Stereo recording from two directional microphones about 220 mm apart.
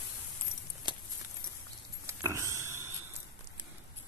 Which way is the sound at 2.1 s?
15° right (ahead or behind).